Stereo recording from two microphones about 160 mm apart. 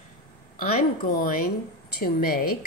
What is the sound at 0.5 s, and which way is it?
A woman's voice, 60° left (ahead or behind).